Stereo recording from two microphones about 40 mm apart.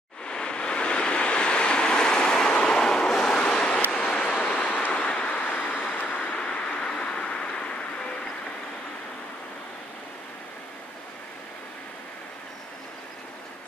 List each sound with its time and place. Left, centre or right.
0.3 s waves: left
3.4 s vehicle: left
5.4 s vehicle: left
6.2 s vehicle: left